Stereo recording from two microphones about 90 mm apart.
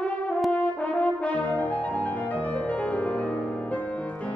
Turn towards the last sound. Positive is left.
turn(degrees=15)  # may be behind; listen again after turning